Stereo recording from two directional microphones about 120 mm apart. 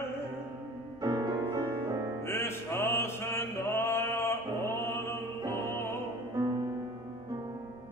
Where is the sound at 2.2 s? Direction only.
20° left (ahead or behind).